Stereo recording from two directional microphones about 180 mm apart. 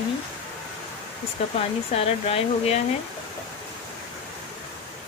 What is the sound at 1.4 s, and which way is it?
Speech, 35° left (ahead or behind).